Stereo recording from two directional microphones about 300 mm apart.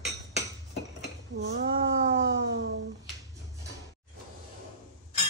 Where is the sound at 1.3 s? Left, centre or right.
Right.